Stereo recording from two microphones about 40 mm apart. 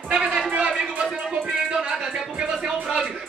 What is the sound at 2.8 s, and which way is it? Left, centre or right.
Speech, centre.